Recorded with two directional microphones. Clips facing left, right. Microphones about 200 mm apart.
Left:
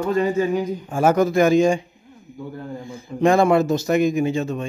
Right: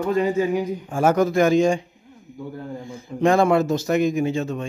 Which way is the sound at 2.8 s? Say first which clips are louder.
Left 1 dB; 10° left (ahead or behind).